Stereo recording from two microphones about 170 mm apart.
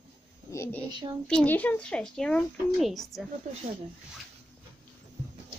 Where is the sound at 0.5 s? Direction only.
15° left (ahead or behind).